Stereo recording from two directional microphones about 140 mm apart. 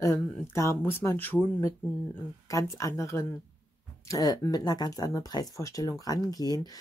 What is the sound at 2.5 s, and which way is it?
Speech, 20° left (ahead or behind).